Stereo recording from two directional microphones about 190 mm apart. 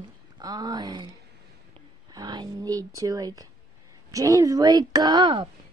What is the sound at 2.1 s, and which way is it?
Speech, 20° right (ahead or behind).